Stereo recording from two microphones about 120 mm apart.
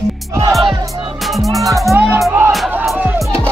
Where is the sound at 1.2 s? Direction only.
Centre (ahead or behind).